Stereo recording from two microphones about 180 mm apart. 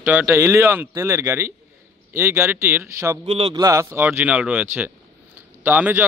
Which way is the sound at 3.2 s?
35° right (ahead or behind).